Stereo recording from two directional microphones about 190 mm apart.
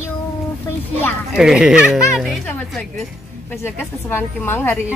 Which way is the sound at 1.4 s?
5° right (ahead or behind).